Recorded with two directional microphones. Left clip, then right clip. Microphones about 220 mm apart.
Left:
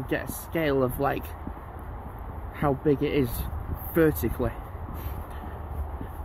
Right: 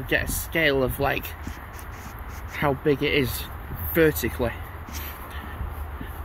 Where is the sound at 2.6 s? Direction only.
15° left (ahead or behind).